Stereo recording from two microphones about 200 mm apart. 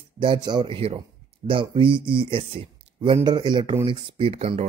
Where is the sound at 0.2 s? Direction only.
25° right (ahead or behind).